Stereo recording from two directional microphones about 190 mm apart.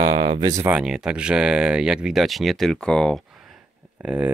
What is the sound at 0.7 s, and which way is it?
Speech, 5° right (ahead or behind).